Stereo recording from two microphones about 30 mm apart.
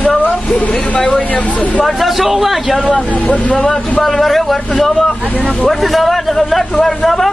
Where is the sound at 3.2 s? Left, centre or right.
Left.